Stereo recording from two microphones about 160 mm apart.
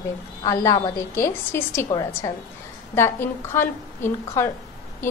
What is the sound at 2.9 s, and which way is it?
A woman's voice, 15° left (ahead or behind).